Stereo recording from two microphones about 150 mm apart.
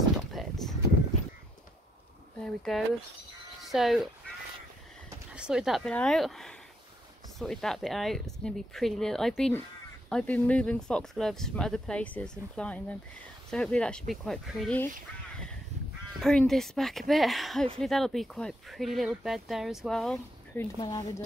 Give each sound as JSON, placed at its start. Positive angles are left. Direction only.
{"t": 0.2, "sound": "a sound", "side_deg": 0}
{"t": 2.4, "sound": "speech", "side_deg": 0}
{"t": 5.3, "sound": "speech", "side_deg": -5}
{"t": 16.2, "sound": "speech", "side_deg": 0}
{"t": 20.8, "sound": "speech", "side_deg": 25}